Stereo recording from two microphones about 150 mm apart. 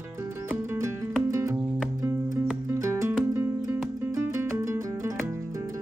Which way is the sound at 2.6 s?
15° right (ahead or behind).